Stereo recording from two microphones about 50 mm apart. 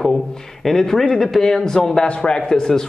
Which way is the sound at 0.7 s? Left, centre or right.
Centre.